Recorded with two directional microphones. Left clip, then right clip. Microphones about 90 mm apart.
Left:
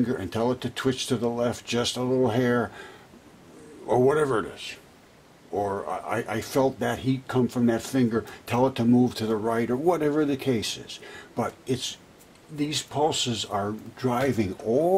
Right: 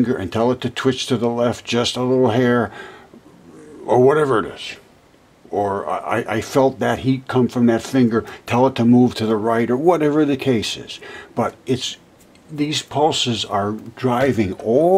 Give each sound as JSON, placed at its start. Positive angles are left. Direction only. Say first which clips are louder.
{"t": 0.0, "sound": "speech", "louder": "right 8 dB", "side_deg": -5}